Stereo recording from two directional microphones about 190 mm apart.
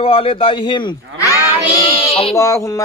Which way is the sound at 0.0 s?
30° left (ahead or behind).